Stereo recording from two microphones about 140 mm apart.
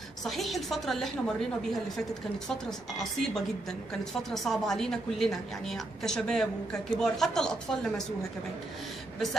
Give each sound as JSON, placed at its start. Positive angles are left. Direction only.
{"t": 0.2, "sound": "a woman's voice", "side_deg": 0}